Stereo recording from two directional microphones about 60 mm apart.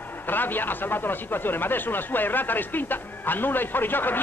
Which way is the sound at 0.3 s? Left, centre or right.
Left.